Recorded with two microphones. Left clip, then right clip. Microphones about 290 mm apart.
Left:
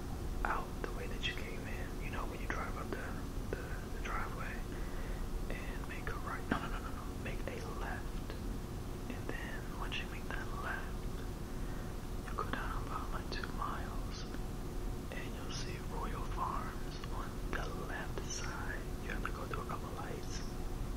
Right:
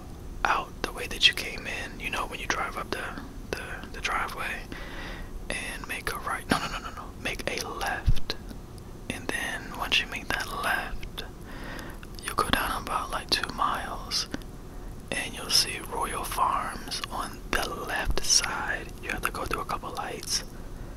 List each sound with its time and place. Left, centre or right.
0.4 s whispering: right
12.3 s whispering: right
15.0 s whispering: right